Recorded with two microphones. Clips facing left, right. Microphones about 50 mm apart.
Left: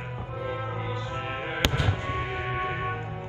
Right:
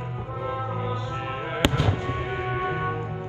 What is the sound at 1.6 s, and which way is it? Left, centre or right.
Music, centre.